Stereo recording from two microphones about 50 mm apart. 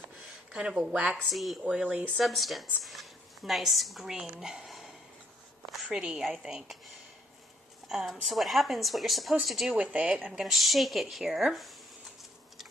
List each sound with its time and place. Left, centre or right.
0.5 s speech: centre
1.3 s speech: centre
1.7 s speech: centre
2.1 s a woman's voice: centre
4.2 s speech: centre
4.6 s a sound: centre
5.9 s speech: centre
8.1 s speech: centre
9.8 s speech: right
10.4 s speech: centre